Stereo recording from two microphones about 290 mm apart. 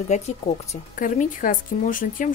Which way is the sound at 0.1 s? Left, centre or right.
Left.